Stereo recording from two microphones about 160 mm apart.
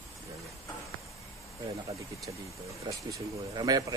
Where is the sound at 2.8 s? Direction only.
25° right (ahead or behind).